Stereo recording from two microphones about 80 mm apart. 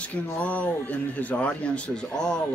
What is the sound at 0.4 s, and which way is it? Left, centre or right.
A man's voice, centre.